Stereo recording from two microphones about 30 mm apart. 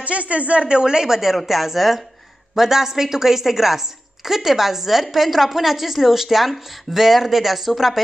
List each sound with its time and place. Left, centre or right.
0.0 s a woman's voice: right
0.7 s speech: right
1.2 s a woman's voice: centre